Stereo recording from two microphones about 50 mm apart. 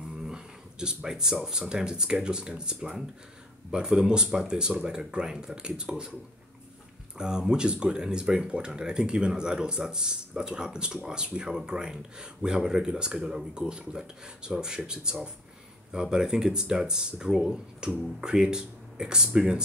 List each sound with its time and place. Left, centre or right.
0.2 s a sound: centre
1.3 s speech: centre
7.2 s speech: centre
15.9 s speech: centre